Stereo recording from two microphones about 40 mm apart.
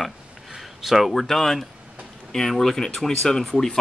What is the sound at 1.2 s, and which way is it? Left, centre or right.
Speech, centre.